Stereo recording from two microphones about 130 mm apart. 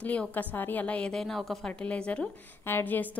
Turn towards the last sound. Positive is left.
turn(degrees=15)  # may be behind; listen again after turning